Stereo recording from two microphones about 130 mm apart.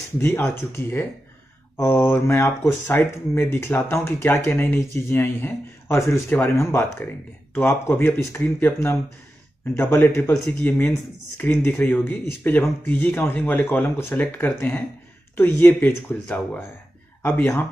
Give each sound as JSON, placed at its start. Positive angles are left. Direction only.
{"t": 0.2, "sound": "speech", "side_deg": 20}